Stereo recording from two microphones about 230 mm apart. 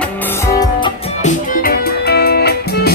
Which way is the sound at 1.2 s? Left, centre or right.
Left.